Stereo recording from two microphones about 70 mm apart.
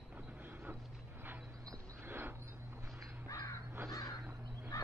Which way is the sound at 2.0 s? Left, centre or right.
Right.